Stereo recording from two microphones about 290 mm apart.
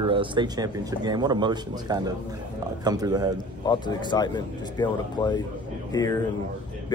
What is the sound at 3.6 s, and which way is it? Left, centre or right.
Speech, centre.